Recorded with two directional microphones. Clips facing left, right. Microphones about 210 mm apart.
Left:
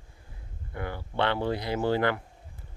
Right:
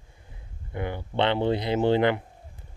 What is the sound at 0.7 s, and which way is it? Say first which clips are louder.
Speech: right 4 dB; 20° right (ahead or behind).